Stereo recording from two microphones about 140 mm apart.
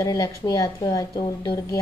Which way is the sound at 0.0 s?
25° left (ahead or behind).